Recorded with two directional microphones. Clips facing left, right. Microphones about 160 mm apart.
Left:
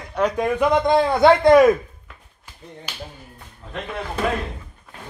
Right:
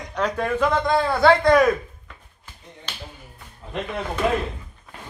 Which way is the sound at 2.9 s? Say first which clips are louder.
Left 1 dB; 10° left (ahead or behind).